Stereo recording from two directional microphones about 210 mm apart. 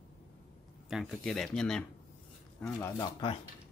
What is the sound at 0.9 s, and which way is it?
Speech, centre (ahead or behind).